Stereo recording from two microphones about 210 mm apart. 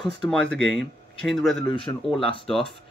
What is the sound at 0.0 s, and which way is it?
Speech, centre (ahead or behind).